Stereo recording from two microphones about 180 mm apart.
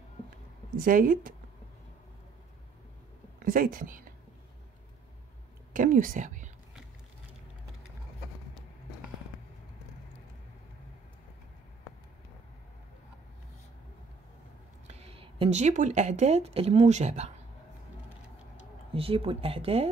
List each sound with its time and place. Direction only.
0.7 s speech: 50° right (ahead or behind)
3.4 s speech: 50° right (ahead or behind)
5.7 s a woman's voice: 45° right (ahead or behind)
14.9 s speech: 35° right (ahead or behind)
18.9 s speech: 30° right (ahead or behind)